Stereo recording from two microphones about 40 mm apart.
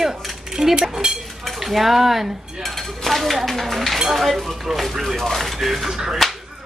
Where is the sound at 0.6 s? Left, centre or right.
Centre.